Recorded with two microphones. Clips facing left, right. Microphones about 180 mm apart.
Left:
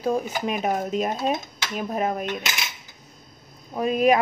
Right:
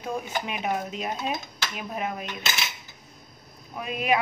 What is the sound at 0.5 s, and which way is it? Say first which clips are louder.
Speech: left 7 dB; 40° left (ahead or behind).